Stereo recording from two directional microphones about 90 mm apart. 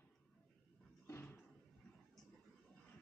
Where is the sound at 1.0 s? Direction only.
25° left (ahead or behind).